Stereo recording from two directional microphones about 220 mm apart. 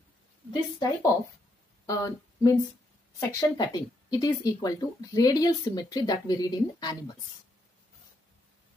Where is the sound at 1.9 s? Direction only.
15° left (ahead or behind).